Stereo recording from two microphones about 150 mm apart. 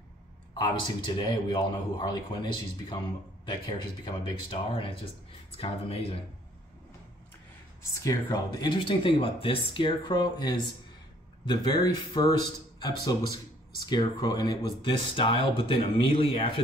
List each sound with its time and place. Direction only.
0.6 s speech: 30° left (ahead or behind)
7.9 s speech: 20° left (ahead or behind)